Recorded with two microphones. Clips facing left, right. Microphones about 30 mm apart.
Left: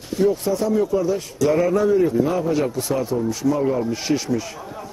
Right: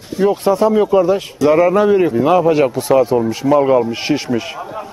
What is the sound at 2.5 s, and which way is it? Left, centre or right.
A man's voice, right.